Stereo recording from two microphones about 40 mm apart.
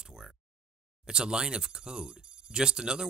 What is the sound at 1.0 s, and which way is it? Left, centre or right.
Speech, centre.